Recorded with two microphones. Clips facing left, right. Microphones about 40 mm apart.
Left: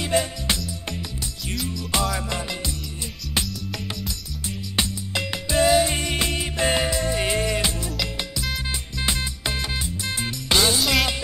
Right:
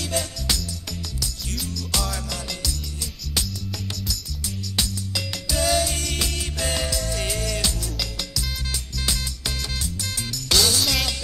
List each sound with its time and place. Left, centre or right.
0.0 s music: left
1.6 s music: left
4.7 s music: left